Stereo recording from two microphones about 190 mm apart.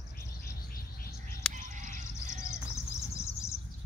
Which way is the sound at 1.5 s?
40° right (ahead or behind).